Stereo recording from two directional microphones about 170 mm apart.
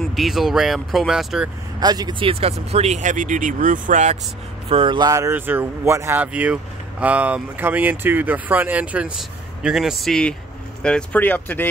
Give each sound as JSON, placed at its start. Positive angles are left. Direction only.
{"t": 0.0, "sound": "speech", "side_deg": 0}
{"t": 1.8, "sound": "speech", "side_deg": -25}
{"t": 4.6, "sound": "speech", "side_deg": -30}